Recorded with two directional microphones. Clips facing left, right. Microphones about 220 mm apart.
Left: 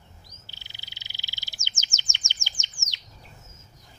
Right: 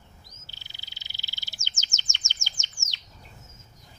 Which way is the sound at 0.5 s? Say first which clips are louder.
Left 1 dB; 15° left (ahead or behind).